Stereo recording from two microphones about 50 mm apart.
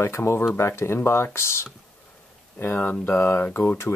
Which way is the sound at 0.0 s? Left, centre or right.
Left.